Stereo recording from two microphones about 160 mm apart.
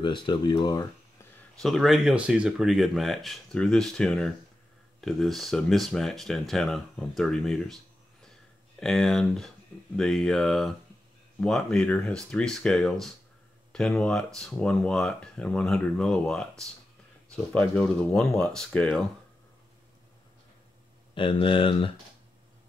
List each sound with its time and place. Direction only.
0.0 s speech: 30° left (ahead or behind)
1.6 s speech: centre (ahead or behind)
8.3 s a sound: 5° left (ahead or behind)
9.9 s speech: 5° left (ahead or behind)
21.1 s speech: 30° left (ahead or behind)